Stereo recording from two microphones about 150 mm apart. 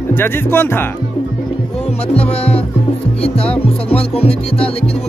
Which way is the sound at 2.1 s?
40° left (ahead or behind).